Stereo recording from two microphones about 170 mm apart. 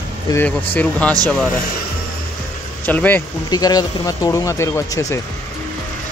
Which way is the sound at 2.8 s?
10° left (ahead or behind).